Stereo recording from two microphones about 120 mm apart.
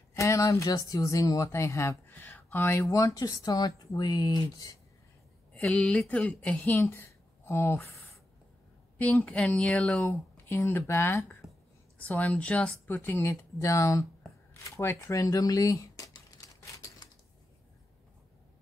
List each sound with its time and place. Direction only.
0.1 s speech: 25° left (ahead or behind)
5.5 s speech: 10° left (ahead or behind)
9.2 s speech: 10° left (ahead or behind)
10.0 s speech: 20° left (ahead or behind)
14.6 s crumpling: 25° left (ahead or behind)